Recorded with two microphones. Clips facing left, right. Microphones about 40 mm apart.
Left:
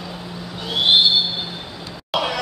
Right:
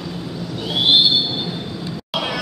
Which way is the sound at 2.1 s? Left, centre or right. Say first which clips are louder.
Left 2 dB; centre.